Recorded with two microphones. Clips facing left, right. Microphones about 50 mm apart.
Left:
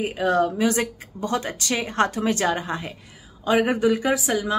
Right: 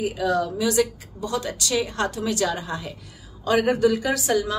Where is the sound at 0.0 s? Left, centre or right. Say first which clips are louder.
Left 2 dB; left.